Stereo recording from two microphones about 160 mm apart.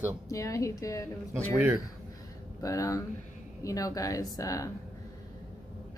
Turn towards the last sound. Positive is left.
turn(degrees=20)  # may be behind; listen again after turning